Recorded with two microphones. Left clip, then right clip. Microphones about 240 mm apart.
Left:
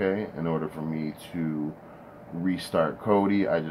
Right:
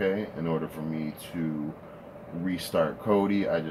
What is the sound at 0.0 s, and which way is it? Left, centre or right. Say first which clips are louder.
Speech: left 1 dB; centre.